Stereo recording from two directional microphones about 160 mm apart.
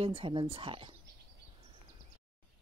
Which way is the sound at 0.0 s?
35° right (ahead or behind).